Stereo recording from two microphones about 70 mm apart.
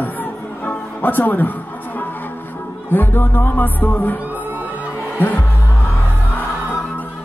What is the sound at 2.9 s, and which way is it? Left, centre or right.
Music, left.